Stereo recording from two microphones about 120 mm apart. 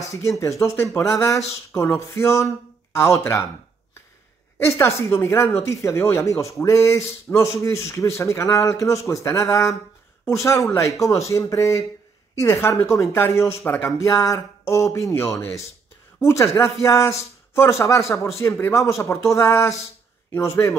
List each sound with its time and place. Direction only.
0.1 s a man's voice: 25° left (ahead or behind)
4.7 s a man's voice: 20° left (ahead or behind)